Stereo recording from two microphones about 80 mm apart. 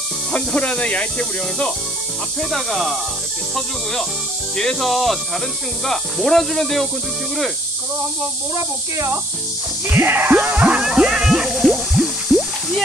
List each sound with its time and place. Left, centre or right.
0.3 s speech: centre
2.5 s speech: centre
4.6 s speech: centre
9.8 s a sound: right; by 12.8 s centre